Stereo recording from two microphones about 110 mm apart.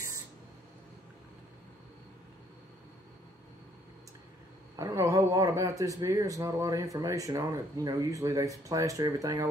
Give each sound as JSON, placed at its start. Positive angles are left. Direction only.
{"t": 4.7, "sound": "speech", "side_deg": -30}